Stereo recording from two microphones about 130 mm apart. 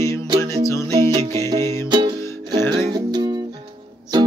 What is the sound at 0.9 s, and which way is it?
Music, 45° right (ahead or behind).